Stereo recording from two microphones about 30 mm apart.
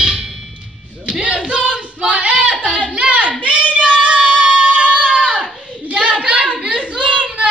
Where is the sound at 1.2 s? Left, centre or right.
Right.